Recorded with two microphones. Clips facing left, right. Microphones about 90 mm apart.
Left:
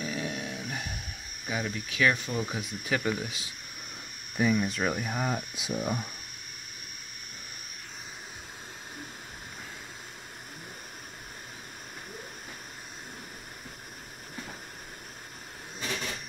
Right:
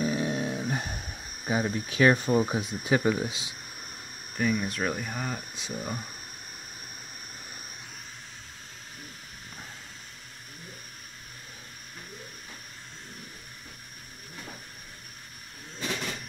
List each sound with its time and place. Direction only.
0.0 s dog: 35° right (ahead or behind)
4.4 s speech: centre (ahead or behind)